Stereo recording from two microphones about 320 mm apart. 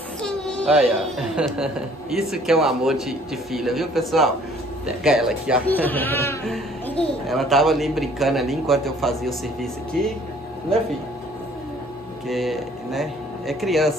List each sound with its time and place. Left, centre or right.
0.2 s speech: centre
12.3 s speech: centre